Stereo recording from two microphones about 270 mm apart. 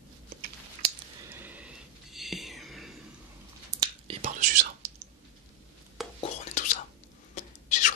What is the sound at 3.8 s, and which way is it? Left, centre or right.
Whispering, right.